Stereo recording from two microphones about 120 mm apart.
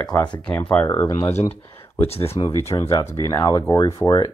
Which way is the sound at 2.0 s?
55° left (ahead or behind).